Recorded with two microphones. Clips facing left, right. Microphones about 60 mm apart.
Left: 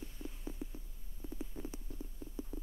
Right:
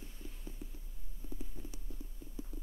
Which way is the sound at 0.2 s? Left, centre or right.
Centre.